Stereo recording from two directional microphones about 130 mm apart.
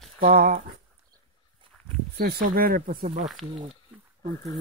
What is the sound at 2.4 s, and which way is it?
Speech, 90° right.